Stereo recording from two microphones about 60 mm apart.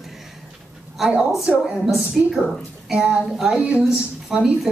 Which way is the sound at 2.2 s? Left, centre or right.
Centre.